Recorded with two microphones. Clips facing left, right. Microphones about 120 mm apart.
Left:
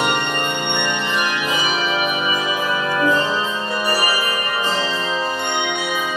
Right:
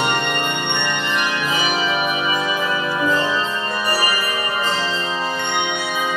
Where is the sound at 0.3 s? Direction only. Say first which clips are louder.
Even; 5° left (ahead or behind).